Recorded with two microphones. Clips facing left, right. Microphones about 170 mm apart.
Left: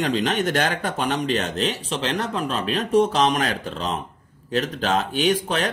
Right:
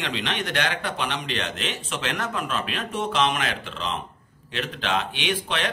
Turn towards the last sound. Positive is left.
turn(degrees=40)  # may be behind; listen again after turning